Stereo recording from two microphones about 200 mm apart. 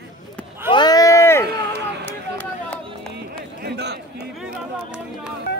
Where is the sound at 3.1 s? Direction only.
55° right (ahead or behind).